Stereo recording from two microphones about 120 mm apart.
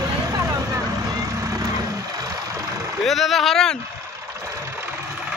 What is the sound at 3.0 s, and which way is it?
Speech, centre (ahead or behind).